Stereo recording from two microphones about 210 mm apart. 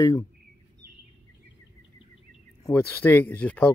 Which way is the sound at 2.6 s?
10° left (ahead or behind).